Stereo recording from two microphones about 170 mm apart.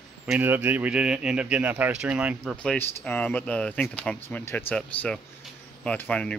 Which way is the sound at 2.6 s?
10° left (ahead or behind).